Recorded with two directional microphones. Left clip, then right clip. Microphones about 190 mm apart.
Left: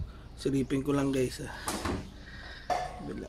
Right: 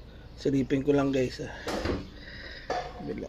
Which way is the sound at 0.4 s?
5° left (ahead or behind).